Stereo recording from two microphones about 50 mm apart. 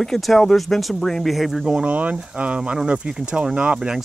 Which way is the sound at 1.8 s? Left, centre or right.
Right.